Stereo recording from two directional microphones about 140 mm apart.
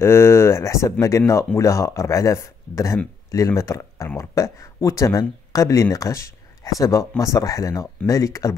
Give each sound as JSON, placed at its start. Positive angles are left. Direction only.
{"t": 0.0, "sound": "speech", "side_deg": 20}